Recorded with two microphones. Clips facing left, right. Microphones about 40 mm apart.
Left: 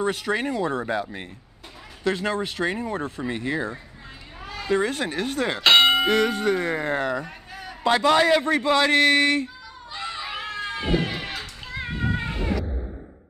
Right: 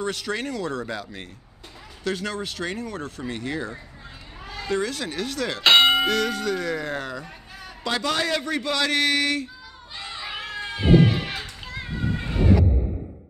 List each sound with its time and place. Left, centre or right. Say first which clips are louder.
0.0 s speech: left 3 dB; left
5.6 s bell: even; centre
6.0 s speech: left 3 dB; left
7.6 s a man's voice: left 6 dB; left
9.9 s a sound: left 4 dB; left
10.2 s a sound: left 1 dB; centre
10.6 s children playing: right 7 dB; centre